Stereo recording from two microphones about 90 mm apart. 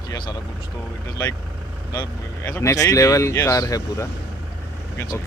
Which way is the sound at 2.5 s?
40° left (ahead or behind).